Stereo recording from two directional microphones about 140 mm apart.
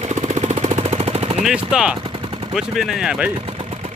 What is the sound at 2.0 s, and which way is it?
Gunshot, 40° right (ahead or behind).